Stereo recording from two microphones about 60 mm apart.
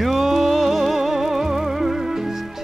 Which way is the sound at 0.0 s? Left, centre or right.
Centre.